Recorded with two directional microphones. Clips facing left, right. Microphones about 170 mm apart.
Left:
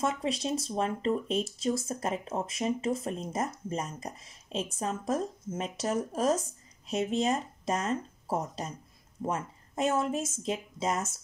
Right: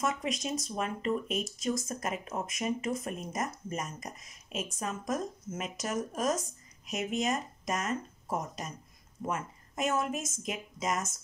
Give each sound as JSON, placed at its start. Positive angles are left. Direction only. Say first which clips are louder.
{"t": 0.0, "sound": "speech", "louder": "left 2 dB", "side_deg": 30}